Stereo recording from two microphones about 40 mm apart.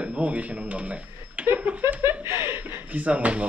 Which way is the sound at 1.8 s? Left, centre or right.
Right.